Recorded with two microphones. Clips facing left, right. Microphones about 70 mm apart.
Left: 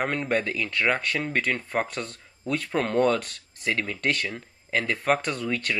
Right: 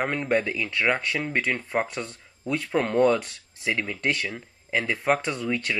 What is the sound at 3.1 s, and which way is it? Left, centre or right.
Speech, centre.